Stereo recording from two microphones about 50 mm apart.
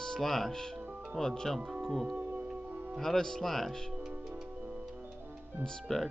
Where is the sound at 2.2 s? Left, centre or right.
Right.